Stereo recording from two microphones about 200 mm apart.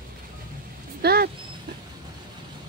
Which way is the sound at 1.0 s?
50° right (ahead or behind).